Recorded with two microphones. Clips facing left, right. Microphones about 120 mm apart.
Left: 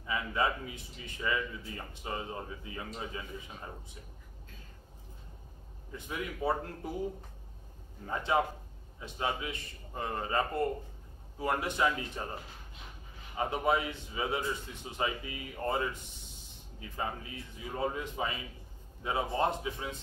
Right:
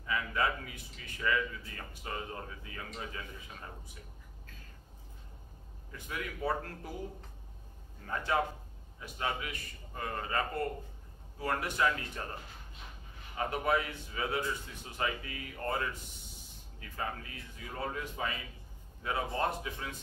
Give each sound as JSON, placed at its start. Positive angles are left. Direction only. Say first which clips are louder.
{"t": 0.0, "sound": "a man's voice", "louder": "left 1 dB", "side_deg": 20}
{"t": 5.9, "sound": "a man's voice", "louder": "left 2 dB", "side_deg": 20}
{"t": 8.1, "sound": "a man's voice", "louder": "left 2 dB", "side_deg": 20}
{"t": 13.4, "sound": "a man's voice", "louder": "left 2 dB", "side_deg": 20}
{"t": 16.9, "sound": "a man's voice", "louder": "left 2 dB", "side_deg": 20}